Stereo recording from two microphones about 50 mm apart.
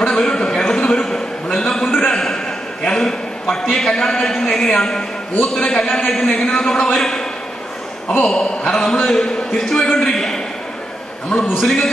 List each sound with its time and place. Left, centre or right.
0.1 s a sound: centre
3.7 s a man's voice: centre
8.3 s a man's voice: centre